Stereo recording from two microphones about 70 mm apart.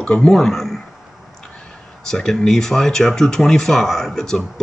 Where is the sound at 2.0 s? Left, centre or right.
Centre.